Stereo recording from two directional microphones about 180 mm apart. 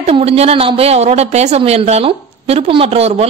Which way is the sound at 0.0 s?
35° right (ahead or behind).